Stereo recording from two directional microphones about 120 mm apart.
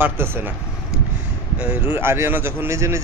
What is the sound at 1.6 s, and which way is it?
Speech, 15° right (ahead or behind).